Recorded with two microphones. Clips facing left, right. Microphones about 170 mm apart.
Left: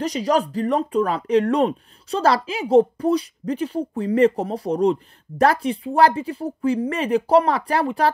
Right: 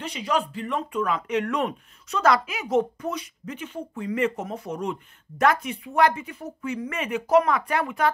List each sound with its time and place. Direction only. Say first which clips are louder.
0.0 s speech: left 6 dB; 40° left (ahead or behind)